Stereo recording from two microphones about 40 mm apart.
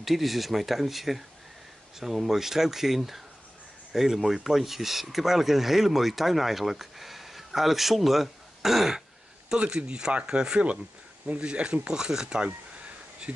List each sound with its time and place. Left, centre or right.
0.0 s speech: centre
9.5 s speech: right